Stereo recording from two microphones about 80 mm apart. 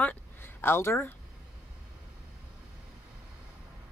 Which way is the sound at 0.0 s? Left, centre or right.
Left.